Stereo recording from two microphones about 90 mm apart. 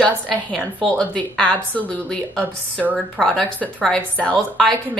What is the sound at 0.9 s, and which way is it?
A woman's voice, 10° left (ahead or behind).